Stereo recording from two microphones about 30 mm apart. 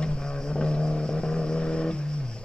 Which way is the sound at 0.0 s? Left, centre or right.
Left.